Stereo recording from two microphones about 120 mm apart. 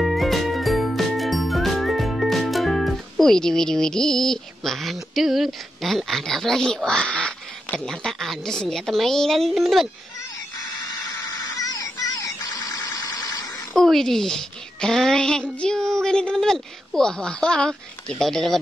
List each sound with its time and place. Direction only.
0.0 s music: centre (ahead or behind)
10.6 s a sound: 35° left (ahead or behind)
13.7 s a woman's voice: 5° left (ahead or behind)